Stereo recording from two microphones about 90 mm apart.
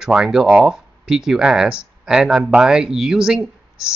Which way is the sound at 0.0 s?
5° right (ahead or behind).